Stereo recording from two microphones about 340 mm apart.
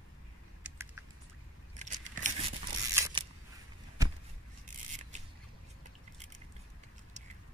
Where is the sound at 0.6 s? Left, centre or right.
Centre.